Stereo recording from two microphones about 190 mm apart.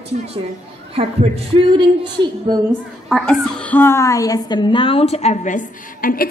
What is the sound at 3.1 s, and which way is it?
A woman's voice, 5° left (ahead or behind).